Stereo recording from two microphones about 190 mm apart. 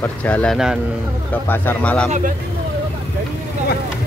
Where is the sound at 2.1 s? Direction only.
40° right (ahead or behind).